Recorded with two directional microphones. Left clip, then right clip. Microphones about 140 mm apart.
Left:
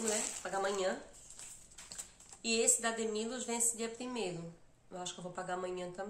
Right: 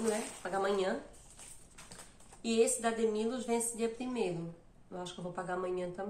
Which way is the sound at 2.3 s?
10° left (ahead or behind).